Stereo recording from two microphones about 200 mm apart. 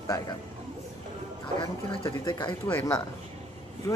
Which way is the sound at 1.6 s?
20° left (ahead or behind).